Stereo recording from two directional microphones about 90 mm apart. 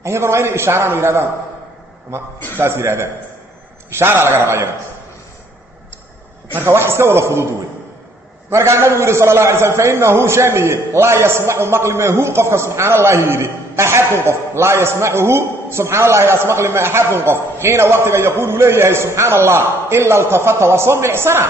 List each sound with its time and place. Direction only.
0.0 s a man's voice: 30° right (ahead or behind)
6.5 s a man's voice: 30° right (ahead or behind)
8.5 s a man's voice: 30° right (ahead or behind)